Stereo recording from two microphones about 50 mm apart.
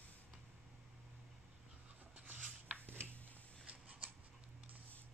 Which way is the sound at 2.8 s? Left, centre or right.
Right.